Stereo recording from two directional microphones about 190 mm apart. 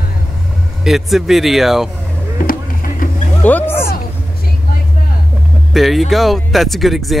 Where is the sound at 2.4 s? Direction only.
45° left (ahead or behind).